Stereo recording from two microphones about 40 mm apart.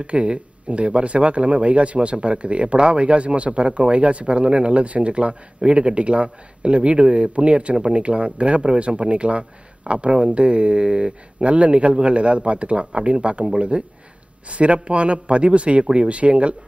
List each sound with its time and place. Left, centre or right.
0.0 s a man's voice: right